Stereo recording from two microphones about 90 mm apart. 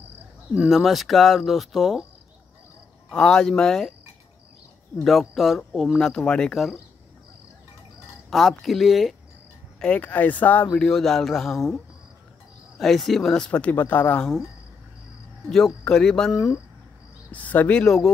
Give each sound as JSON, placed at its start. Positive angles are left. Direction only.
{"t": 0.7, "sound": "speech", "side_deg": 0}
{"t": 3.1, "sound": "speech", "side_deg": 10}
{"t": 5.0, "sound": "speech", "side_deg": 0}
{"t": 8.3, "sound": "speech", "side_deg": 0}
{"t": 9.8, "sound": "speech", "side_deg": 15}
{"t": 10.8, "sound": "speech", "side_deg": 5}
{"t": 15.8, "sound": "speech", "side_deg": 5}
{"t": 17.3, "sound": "speech", "side_deg": 15}